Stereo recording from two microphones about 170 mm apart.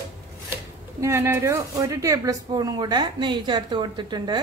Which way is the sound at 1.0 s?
15° right (ahead or behind).